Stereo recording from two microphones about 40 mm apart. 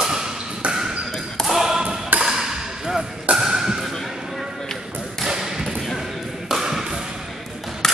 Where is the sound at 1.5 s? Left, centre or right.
Centre.